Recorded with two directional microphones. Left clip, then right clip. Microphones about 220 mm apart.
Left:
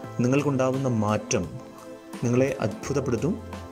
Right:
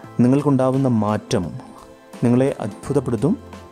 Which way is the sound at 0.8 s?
15° right (ahead or behind).